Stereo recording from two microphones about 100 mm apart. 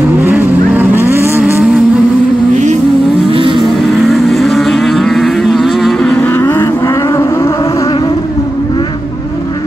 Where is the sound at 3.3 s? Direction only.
60° right (ahead or behind).